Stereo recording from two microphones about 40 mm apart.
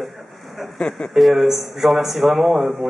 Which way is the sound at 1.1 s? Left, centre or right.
Centre.